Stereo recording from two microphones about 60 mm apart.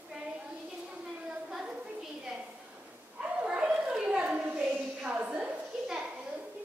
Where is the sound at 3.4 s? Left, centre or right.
Centre.